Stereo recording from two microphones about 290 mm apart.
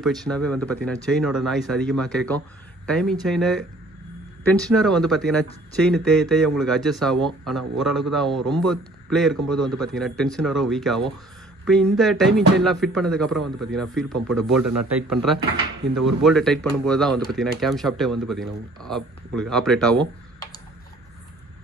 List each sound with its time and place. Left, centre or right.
0.0 s speech: centre
15.9 s speech: right
16.3 s speech: centre